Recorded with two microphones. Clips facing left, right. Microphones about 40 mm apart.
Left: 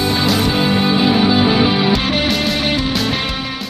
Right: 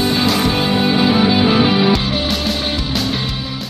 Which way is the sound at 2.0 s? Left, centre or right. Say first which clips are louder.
Left 2 dB; left.